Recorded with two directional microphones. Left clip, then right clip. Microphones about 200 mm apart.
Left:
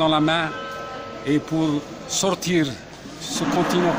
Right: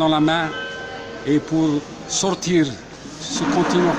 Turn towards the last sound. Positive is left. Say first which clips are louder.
# right 2 dB
turn(degrees=5)  # may be behind; listen again after turning